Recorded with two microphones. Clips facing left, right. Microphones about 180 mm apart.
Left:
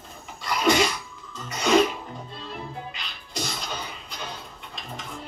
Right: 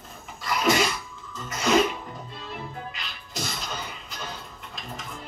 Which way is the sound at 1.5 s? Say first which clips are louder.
Left 2 dB; centre (ahead or behind).